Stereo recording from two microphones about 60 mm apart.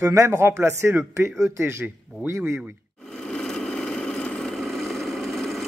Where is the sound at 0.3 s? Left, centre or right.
Right.